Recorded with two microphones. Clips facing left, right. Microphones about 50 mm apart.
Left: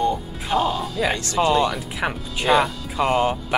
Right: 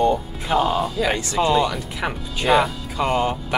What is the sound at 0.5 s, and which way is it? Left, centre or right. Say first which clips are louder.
Speech: right 2 dB; centre.